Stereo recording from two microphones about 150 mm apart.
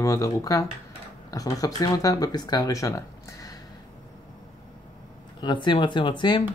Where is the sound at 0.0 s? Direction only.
20° left (ahead or behind).